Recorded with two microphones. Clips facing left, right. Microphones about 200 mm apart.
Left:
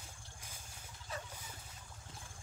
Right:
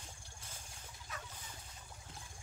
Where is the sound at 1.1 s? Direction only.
30° left (ahead or behind).